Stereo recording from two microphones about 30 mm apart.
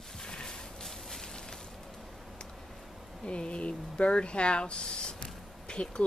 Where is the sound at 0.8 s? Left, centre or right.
Centre.